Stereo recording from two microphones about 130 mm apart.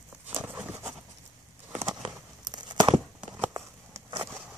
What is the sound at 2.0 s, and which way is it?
Tearing, 35° right (ahead or behind).